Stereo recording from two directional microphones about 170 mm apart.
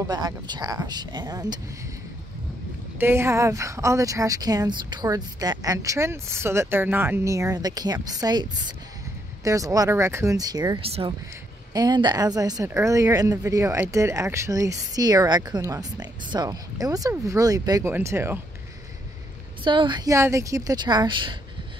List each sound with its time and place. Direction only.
0.0 s speech: 25° right (ahead or behind)
3.0 s speech: 15° right (ahead or behind)
10.8 s speech: 35° right (ahead or behind); by 18.4 s 15° right (ahead or behind)
19.6 s speech: 30° right (ahead or behind)